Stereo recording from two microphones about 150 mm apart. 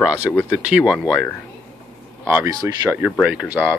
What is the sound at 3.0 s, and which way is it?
Speech, 10° right (ahead or behind).